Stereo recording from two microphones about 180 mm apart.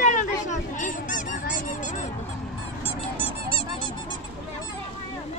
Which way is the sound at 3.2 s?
30° left (ahead or behind).